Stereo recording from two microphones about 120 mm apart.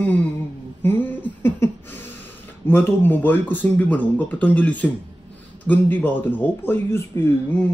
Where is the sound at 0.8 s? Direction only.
15° left (ahead or behind).